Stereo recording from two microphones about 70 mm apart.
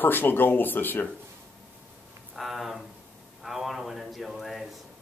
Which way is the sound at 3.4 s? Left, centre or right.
Centre.